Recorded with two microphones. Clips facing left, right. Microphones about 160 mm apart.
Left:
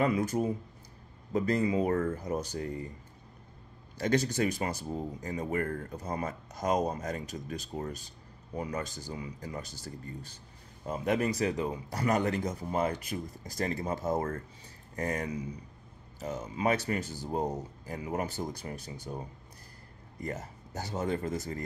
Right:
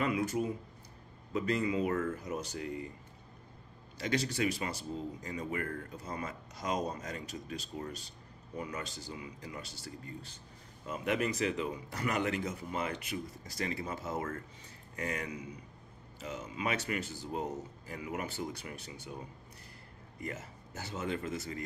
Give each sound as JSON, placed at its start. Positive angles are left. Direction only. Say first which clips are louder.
{"t": 0.0, "sound": "speech", "louder": "left 4 dB", "side_deg": 40}
{"t": 4.0, "sound": "speech", "louder": "left 4 dB", "side_deg": 45}